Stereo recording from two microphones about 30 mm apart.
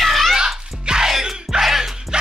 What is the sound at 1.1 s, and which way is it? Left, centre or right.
Music, centre.